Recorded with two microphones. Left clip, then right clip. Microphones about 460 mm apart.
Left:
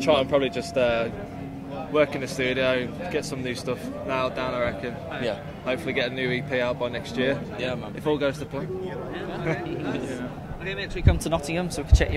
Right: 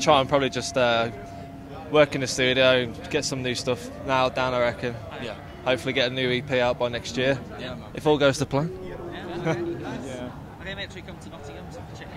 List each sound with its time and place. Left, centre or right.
0.0 s speech: right